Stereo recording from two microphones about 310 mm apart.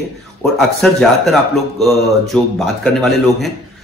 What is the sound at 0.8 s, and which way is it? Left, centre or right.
Speech, centre.